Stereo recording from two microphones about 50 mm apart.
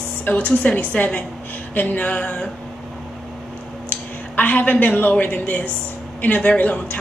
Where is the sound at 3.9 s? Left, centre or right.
Left.